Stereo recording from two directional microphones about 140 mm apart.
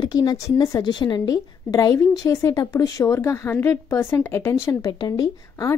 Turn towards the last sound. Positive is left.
turn(degrees=25)  # may be behind; listen again after turning